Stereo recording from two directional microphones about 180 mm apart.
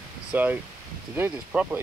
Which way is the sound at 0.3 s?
10° right (ahead or behind).